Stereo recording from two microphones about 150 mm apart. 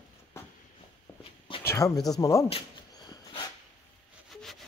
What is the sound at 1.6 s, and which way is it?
Speech, 20° left (ahead or behind).